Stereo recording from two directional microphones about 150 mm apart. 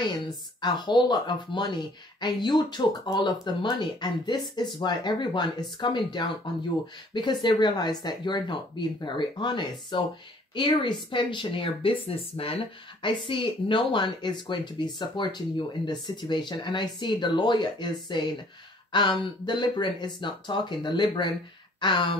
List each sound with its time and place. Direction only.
0.0 s speech: 30° left (ahead or behind)